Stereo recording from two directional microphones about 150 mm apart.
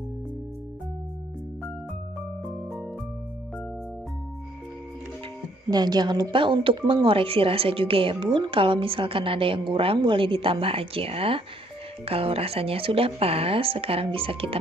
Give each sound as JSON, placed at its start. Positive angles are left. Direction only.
{"t": 2.4, "sound": "music", "side_deg": 0}
{"t": 5.7, "sound": "speech", "side_deg": -25}